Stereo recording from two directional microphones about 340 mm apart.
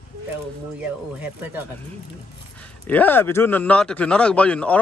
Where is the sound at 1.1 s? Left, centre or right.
Centre.